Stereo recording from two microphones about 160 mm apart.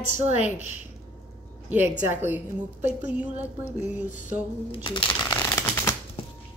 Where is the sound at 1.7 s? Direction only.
15° right (ahead or behind).